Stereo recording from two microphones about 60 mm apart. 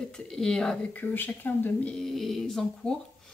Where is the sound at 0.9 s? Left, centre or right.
Left.